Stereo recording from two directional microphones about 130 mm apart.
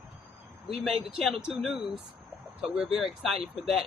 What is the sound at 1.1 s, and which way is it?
Speech, 5° right (ahead or behind).